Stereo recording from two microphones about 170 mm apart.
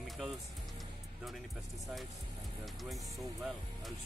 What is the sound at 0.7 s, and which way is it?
Music, centre (ahead or behind).